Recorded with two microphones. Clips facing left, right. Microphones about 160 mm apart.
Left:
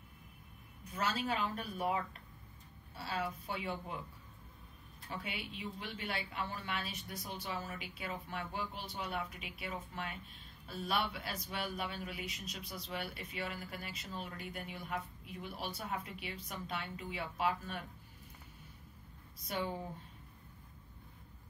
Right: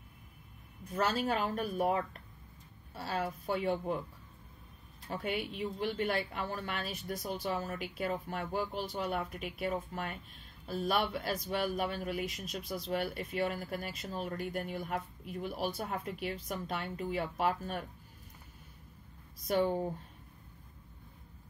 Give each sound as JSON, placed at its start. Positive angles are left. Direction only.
{"t": 0.8, "sound": "a man's voice", "side_deg": -50}
{"t": 5.1, "sound": "a man's voice", "side_deg": -45}
{"t": 19.4, "sound": "a man's voice", "side_deg": -45}